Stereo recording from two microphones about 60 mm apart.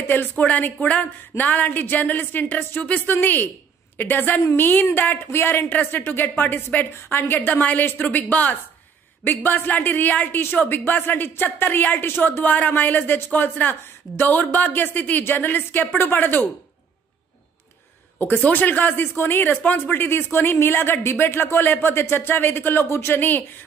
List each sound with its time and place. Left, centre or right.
0.1 s a woman's voice: left
18.2 s a woman's voice: left